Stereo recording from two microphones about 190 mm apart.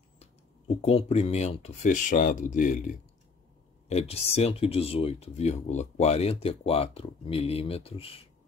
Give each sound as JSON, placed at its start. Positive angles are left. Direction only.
{"t": 0.2, "sound": "speech", "side_deg": 30}
{"t": 3.9, "sound": "speech", "side_deg": 30}